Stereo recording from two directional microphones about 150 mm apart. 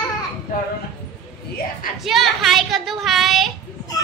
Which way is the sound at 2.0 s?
Centre (ahead or behind).